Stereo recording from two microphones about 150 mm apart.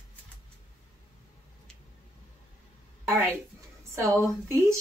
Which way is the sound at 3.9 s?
20° right (ahead or behind).